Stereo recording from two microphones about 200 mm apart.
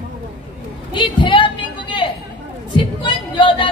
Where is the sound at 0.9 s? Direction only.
25° left (ahead or behind).